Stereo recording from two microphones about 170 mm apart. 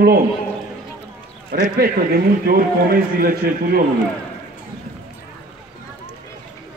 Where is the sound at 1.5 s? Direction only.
65° right (ahead or behind).